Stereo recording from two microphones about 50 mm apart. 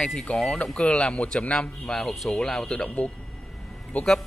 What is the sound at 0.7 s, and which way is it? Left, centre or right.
Speech, left.